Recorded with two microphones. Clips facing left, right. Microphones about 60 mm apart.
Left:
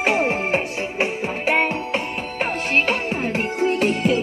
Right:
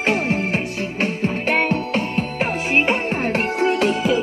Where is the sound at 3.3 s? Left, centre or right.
Right.